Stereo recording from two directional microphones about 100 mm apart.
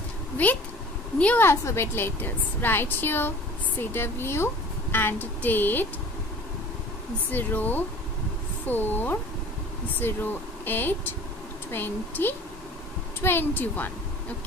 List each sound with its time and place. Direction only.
1.1 s speech: 15° left (ahead or behind)
1.4 s a woman's voice: 25° left (ahead or behind)
7.2 s a woman's voice: 15° left (ahead or behind)